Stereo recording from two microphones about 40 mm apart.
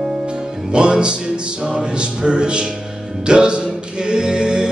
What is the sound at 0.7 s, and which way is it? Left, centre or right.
Music, right.